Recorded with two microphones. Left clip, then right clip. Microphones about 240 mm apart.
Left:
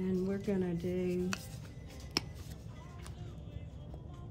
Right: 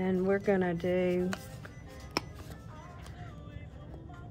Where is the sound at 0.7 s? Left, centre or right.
Centre.